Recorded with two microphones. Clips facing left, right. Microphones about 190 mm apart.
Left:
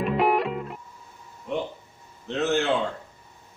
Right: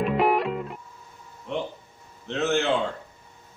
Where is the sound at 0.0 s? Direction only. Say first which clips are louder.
Even; centre (ahead or behind).